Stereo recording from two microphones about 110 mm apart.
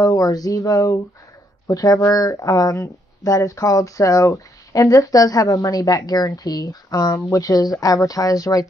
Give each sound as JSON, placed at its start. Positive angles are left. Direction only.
{"t": 0.0, "sound": "speech", "side_deg": 35}